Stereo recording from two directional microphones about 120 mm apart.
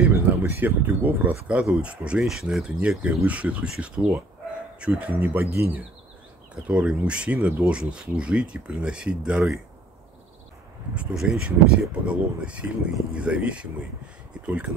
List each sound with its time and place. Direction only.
0.1 s speech: 15° right (ahead or behind)
6.5 s speech: 10° right (ahead or behind)
11.0 s speech: 10° right (ahead or behind)